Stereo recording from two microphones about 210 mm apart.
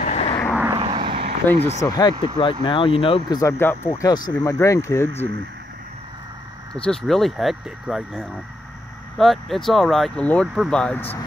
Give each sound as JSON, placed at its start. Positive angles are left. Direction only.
{"t": 0.0, "sound": "vehicle", "side_deg": 30}
{"t": 0.7, "sound": "vehicle", "side_deg": -25}
{"t": 1.5, "sound": "speech", "side_deg": 15}
{"t": 6.7, "sound": "speech", "side_deg": 5}